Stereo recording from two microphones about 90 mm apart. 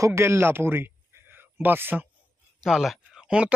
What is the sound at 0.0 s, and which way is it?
Speech, 30° right (ahead or behind).